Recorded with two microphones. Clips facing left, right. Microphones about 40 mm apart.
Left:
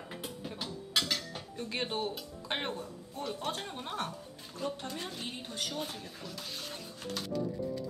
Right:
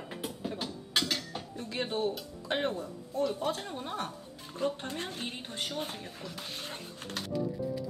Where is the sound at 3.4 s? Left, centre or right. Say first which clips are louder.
Right 4 dB; left.